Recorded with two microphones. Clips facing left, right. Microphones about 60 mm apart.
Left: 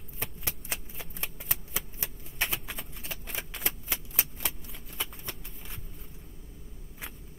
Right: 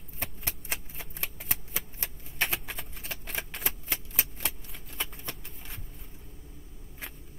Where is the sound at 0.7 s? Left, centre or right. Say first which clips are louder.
Right 1 dB; centre.